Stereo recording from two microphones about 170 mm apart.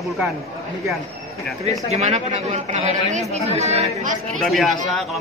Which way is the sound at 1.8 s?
40° right (ahead or behind).